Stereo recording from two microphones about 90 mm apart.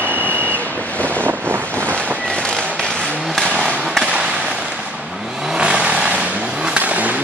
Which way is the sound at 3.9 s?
5° right (ahead or behind).